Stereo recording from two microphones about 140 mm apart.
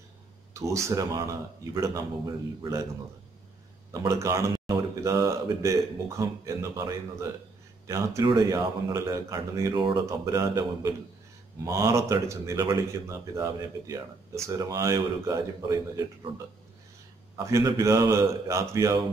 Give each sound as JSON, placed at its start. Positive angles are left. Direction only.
{"t": 0.6, "sound": "speech", "side_deg": -20}
{"t": 3.9, "sound": "speech", "side_deg": -20}
{"t": 9.8, "sound": "speech", "side_deg": -35}
{"t": 10.0, "sound": "speech", "side_deg": -25}
{"t": 17.4, "sound": "speech", "side_deg": -20}